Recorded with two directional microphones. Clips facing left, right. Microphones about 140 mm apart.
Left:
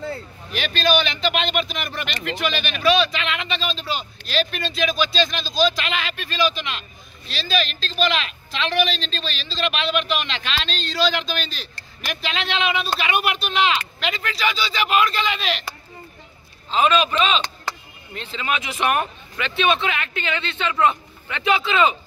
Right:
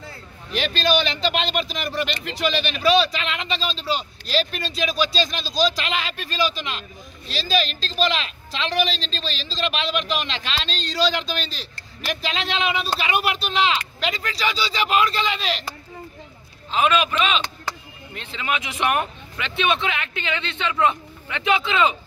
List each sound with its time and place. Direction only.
0.5 s a man's voice: 30° right (ahead or behind)
16.7 s a man's voice: 10° right (ahead or behind)